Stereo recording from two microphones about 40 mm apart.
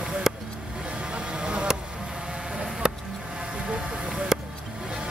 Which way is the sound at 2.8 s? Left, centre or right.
Right.